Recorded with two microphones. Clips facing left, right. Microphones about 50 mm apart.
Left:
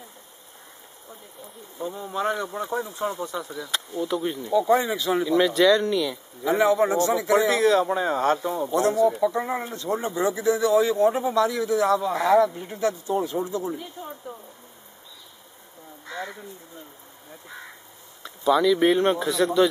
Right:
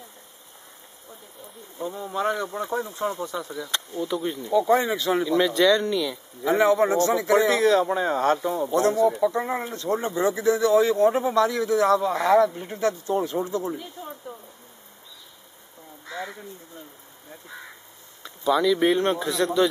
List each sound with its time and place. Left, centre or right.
1.8 s speech: centre
6.7 s speech: centre
9.1 s speech: centre
10.0 s speech: centre
12.0 s speech: centre
12.5 s speech: centre
13.1 s speech: right
13.7 s speech: centre
14.3 s a sound: centre
16.1 s crow: centre
18.2 s speech: centre